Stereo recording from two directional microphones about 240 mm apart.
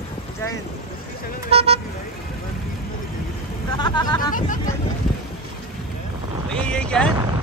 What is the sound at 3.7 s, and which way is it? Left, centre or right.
Speech, centre.